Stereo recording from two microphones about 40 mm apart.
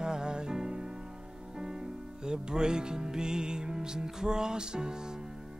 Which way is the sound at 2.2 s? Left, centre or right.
Centre.